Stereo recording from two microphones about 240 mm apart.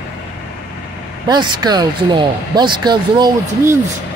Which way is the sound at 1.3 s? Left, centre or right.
Centre.